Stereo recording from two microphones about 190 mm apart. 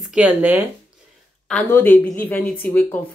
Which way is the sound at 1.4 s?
10° left (ahead or behind).